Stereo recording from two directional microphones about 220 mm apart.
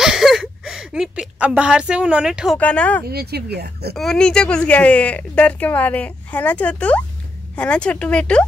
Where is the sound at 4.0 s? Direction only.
5° left (ahead or behind).